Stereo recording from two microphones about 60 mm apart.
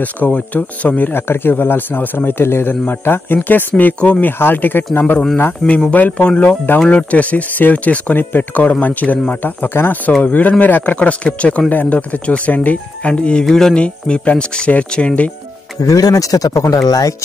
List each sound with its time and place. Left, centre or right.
0.0 s speech: left
1.1 s a man's voice: left
5.7 s a man's voice: left
11.0 s speech: centre
13.5 s speech: centre
13.7 s speech: centre
15.8 s speech: left